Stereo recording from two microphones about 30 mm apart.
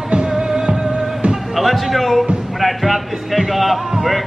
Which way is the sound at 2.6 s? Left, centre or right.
Centre.